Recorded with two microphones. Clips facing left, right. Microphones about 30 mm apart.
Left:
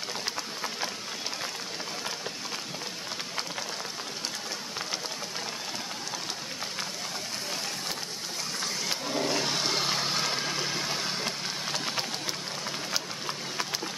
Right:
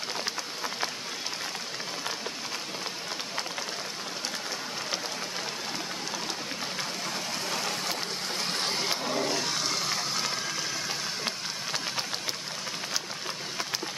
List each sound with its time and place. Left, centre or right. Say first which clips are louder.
8.5 s a sound: right 3 dB; right
9.1 s toilet flush: left 2 dB; centre
9.4 s water: left 2 dB; centre
10.3 s vehicle: left 2 dB; left